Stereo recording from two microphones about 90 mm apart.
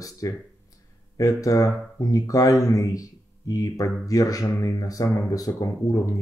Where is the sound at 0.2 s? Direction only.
40° left (ahead or behind).